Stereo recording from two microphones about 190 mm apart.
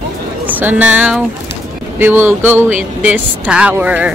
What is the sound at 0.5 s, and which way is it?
Speech, 10° right (ahead or behind).